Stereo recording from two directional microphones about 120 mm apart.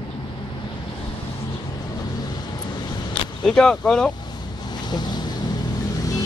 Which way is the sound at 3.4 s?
5° left (ahead or behind).